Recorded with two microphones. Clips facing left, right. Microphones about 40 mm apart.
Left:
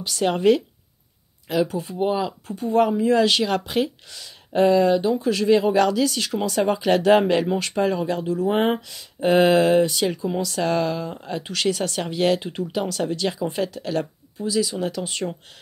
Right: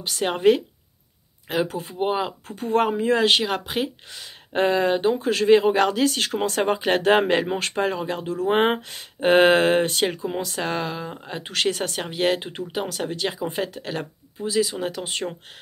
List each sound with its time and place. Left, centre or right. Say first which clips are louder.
0.0 s speech: even; right
1.5 s speech: left 2 dB; right
3.4 s speech: left 3 dB; centre
4.1 s speech: left 2 dB; right
8.3 s speech: right 1 dB; right